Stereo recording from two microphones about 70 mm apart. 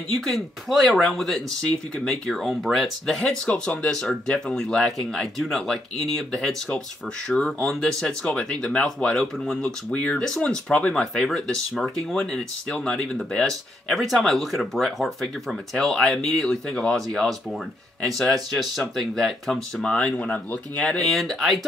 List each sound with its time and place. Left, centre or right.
0.2 s speech: centre
13.5 s speech: centre
21.2 s speech: centre